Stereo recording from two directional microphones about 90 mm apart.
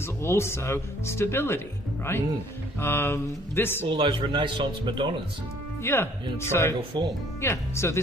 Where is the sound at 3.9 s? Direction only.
65° right (ahead or behind).